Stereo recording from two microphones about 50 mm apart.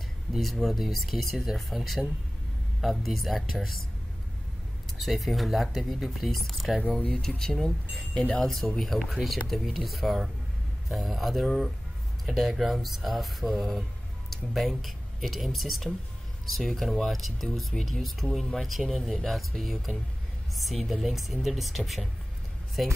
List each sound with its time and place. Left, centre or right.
0.3 s speech: centre
4.9 s speech: centre
7.2 s speech: centre
8.4 s speech: centre